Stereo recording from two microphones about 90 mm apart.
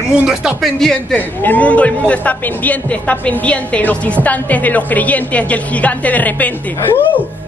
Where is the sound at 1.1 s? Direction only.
20° left (ahead or behind).